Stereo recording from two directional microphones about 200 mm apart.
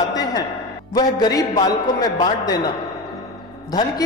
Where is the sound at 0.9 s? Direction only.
20° left (ahead or behind).